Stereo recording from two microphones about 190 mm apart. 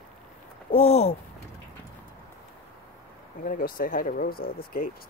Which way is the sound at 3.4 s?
45° left (ahead or behind).